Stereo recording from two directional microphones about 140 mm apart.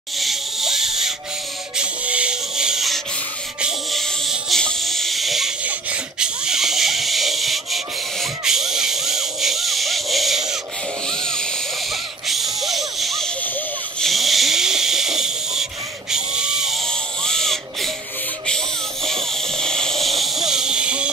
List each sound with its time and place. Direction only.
0.2 s music: centre (ahead or behind)
3.6 s snake: centre (ahead or behind)
11.1 s music: 5° left (ahead or behind)
11.9 s a sound: centre (ahead or behind)
13.9 s snoring: centre (ahead or behind)
16.1 s a sound: 5° right (ahead or behind)
19.1 s hiss: 45° right (ahead or behind)
19.6 s hiss: 5° left (ahead or behind)